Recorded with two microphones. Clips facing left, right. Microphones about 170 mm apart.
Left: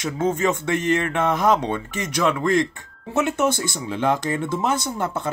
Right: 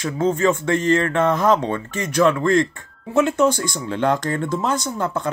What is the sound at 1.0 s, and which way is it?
Speech, 15° left (ahead or behind).